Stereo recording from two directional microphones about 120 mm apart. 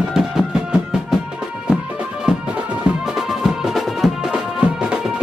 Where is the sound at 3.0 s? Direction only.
5° right (ahead or behind).